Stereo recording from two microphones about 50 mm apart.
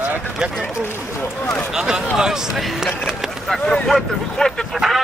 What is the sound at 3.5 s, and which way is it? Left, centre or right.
Vehicle, centre.